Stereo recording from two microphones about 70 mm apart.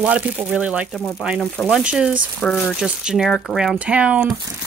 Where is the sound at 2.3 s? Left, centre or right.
Centre.